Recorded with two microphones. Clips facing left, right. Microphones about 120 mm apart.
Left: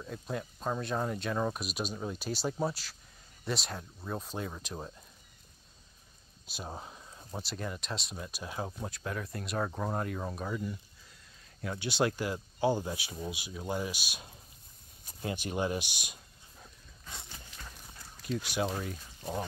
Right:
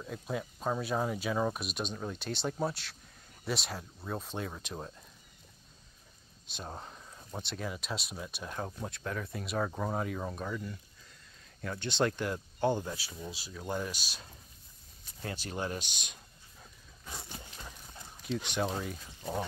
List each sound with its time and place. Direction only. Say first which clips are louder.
0.0 s speech: right 1 dB; centre (ahead or behind)
6.4 s speech: left 1 dB; 5° left (ahead or behind)
17.6 s clip-clop: right 2 dB; 15° right (ahead or behind)
18.2 s speech: even; 5° left (ahead or behind)